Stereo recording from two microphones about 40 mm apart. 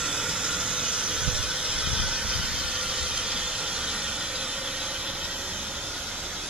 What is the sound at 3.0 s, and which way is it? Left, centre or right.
Train, centre.